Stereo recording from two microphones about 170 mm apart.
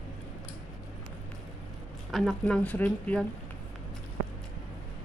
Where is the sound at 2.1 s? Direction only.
5° left (ahead or behind).